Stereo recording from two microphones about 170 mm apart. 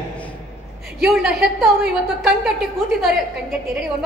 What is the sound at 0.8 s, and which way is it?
A woman's voice, 5° right (ahead or behind).